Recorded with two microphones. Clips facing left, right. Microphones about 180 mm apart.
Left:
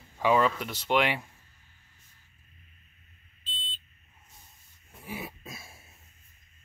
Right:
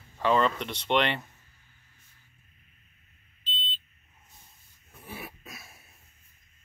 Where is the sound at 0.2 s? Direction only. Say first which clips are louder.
Even; 5° left (ahead or behind).